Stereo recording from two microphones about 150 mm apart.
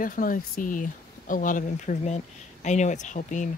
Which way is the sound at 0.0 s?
65° left (ahead or behind).